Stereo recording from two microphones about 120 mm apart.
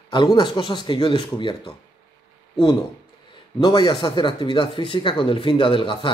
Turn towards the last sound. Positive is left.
turn(degrees=45)  # may be behind; listen again after turning